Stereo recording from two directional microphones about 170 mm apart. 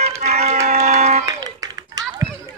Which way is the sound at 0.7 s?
40° right (ahead or behind).